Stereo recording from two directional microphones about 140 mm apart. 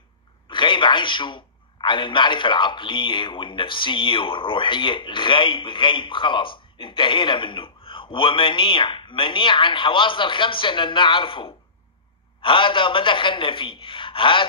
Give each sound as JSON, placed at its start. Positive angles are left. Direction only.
{"t": 0.5, "sound": "a man's voice", "side_deg": 35}